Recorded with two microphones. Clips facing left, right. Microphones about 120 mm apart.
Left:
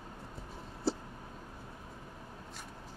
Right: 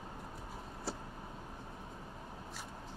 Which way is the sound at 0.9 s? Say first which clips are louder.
Left 9 dB; 30° left (ahead or behind).